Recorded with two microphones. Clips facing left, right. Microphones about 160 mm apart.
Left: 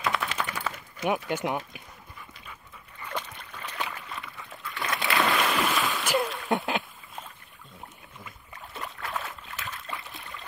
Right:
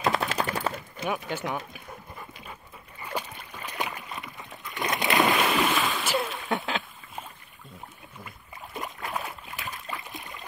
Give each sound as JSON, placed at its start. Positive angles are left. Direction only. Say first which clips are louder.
{"t": 0.0, "sound": "machine gun", "louder": "right 3 dB", "side_deg": -40}
{"t": 1.0, "sound": "speech", "louder": "left 3 dB", "side_deg": 15}
{"t": 3.0, "sound": "a sound", "louder": "right 2 dB", "side_deg": -10}
{"t": 8.7, "sound": "boat", "louder": "right 2 dB", "side_deg": -15}